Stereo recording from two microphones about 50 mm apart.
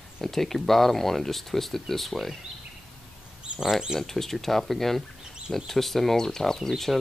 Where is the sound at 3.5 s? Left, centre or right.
Centre.